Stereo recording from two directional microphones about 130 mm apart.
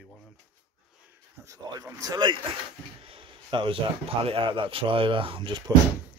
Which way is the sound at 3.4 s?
40° right (ahead or behind).